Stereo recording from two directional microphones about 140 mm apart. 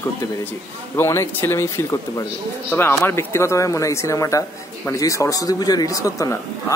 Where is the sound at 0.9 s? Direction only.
20° left (ahead or behind).